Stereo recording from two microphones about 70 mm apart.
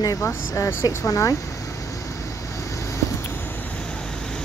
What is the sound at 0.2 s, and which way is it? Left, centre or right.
Speech, left.